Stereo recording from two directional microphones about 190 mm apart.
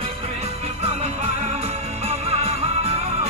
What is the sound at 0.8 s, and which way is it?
Music, 35° right (ahead or behind).